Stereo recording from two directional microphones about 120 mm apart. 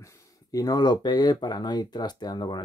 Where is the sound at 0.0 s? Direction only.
30° left (ahead or behind).